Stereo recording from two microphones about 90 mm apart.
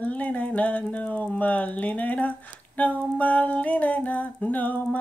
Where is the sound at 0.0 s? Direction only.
15° left (ahead or behind).